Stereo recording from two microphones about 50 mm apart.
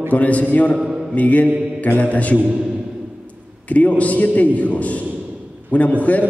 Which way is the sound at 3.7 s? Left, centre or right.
Left.